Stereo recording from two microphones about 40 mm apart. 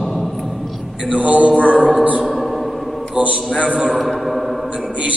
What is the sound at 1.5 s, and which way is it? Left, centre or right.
Music, left.